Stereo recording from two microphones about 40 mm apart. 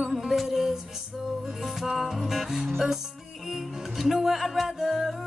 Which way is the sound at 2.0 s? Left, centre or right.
Centre.